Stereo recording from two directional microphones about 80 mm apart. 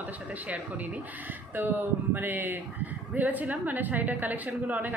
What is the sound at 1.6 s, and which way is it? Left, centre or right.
A woman's voice, right.